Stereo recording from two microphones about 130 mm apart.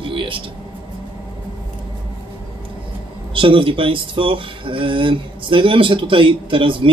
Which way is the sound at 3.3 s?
40° right (ahead or behind).